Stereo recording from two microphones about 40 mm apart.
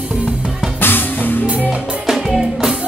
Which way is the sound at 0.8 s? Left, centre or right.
Left.